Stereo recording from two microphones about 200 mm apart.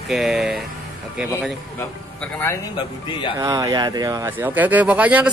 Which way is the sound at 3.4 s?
20° right (ahead or behind).